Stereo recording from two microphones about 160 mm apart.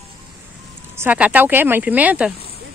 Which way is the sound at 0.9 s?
10° right (ahead or behind).